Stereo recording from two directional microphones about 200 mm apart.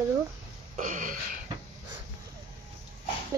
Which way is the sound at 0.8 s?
40° right (ahead or behind).